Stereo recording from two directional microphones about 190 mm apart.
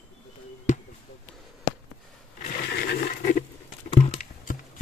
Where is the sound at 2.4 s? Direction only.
55° left (ahead or behind).